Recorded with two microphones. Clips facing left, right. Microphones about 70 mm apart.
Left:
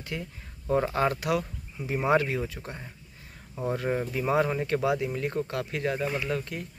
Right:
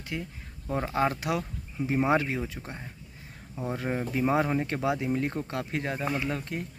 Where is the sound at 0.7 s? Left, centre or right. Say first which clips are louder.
Left 5 dB; centre.